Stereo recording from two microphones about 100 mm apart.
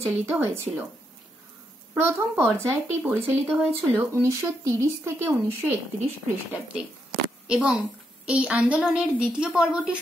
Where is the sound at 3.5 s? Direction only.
5° left (ahead or behind).